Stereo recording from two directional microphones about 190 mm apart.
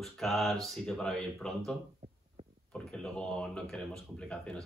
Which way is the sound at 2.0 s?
35° right (ahead or behind).